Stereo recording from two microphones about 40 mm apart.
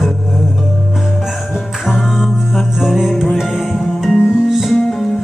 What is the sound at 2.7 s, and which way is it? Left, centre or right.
Music, centre.